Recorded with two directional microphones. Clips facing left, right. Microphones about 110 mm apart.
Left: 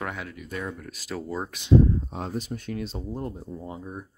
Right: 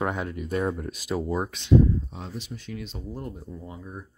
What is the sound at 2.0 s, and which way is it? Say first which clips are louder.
Speech: left 6 dB; 50° left (ahead or behind).